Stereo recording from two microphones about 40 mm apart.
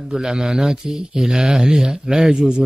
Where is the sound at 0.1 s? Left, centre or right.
Centre.